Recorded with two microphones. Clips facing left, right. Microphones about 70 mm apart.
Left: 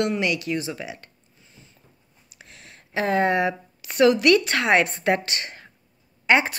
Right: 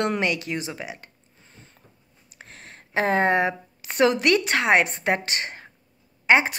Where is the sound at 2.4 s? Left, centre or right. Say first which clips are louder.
Right 3 dB; right.